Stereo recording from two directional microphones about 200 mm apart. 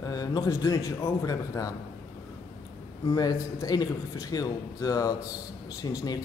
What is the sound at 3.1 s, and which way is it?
A man's voice, 20° left (ahead or behind).